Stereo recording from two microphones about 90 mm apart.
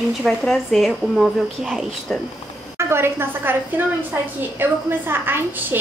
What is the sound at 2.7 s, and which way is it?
Speech, 25° right (ahead or behind).